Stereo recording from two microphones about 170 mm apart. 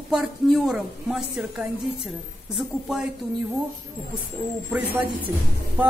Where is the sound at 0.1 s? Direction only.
Centre (ahead or behind).